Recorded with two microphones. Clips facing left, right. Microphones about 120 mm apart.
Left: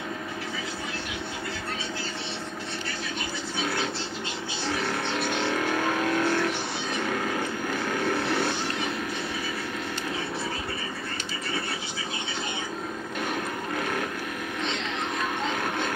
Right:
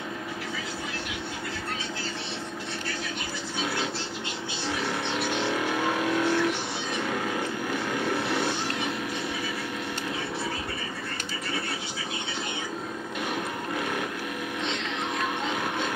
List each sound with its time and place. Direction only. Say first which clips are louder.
5.4 s vehicle: left 1 dB; 10° right (ahead or behind)